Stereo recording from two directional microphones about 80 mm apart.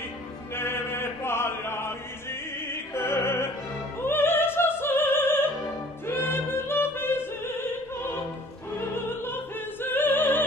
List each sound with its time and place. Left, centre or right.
0.6 s chant: left
2.7 s opera: left
6.0 s music: left
8.7 s opera: left